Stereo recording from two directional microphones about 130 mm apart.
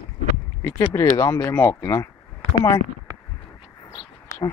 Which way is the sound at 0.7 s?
20° left (ahead or behind).